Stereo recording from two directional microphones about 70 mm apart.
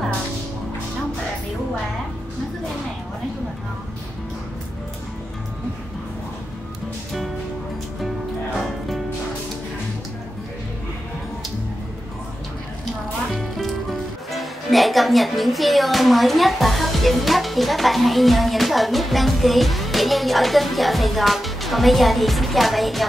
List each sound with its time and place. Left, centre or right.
8.5 s music: centre
13.3 s music: centre
14.3 s speech: centre